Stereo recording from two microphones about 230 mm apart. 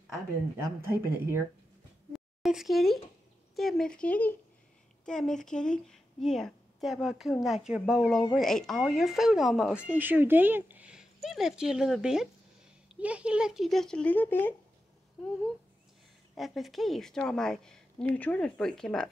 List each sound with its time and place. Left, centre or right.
0.0 s speech: centre
2.1 s a sound: centre
3.5 s speech: centre
16.3 s speech: centre